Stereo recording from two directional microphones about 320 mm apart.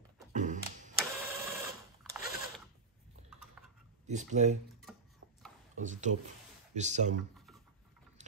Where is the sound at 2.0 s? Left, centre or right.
Centre.